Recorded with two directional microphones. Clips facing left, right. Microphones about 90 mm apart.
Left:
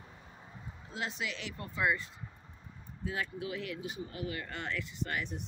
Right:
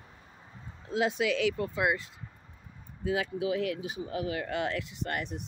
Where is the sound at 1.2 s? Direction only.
90° right.